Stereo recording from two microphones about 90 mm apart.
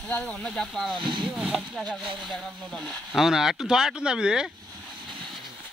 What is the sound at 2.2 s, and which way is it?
Speech, 10° left (ahead or behind).